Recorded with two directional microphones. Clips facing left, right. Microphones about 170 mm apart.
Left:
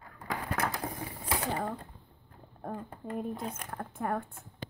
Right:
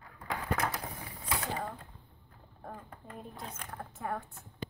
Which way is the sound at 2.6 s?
50° left (ahead or behind).